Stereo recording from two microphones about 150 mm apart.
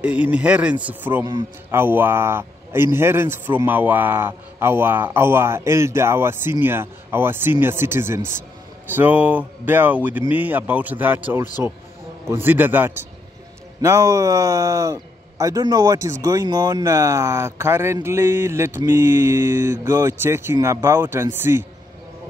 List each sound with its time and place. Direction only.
0.0 s a man's voice: 10° right (ahead or behind)